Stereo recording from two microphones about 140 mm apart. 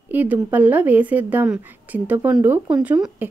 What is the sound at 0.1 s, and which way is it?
A woman's voice, 10° right (ahead or behind).